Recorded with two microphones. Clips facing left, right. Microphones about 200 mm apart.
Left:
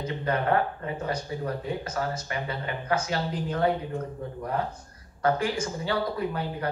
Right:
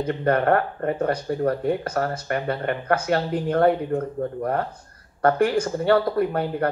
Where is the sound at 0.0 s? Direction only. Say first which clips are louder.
Right 7 dB; 55° right (ahead or behind).